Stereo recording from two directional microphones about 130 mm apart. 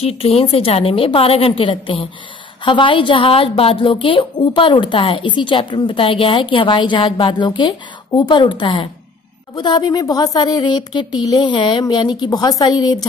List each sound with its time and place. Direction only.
0.0 s a woman's voice: 50° left (ahead or behind); by 12.9 s 30° left (ahead or behind)